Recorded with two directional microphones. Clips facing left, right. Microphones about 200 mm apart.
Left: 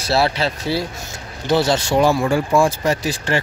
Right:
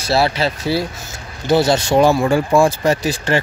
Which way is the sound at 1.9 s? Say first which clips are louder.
Right 3 dB; 25° right (ahead or behind).